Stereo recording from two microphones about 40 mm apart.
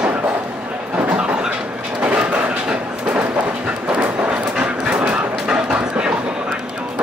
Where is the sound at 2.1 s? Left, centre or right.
Right.